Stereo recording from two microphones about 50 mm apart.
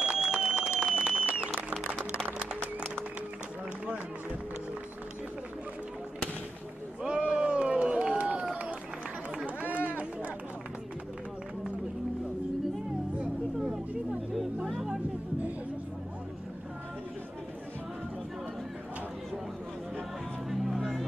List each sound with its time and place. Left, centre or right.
0.0 s a sound: centre
2.6 s music: centre
7.0 s run: centre
9.6 s run: right
20.4 s music: centre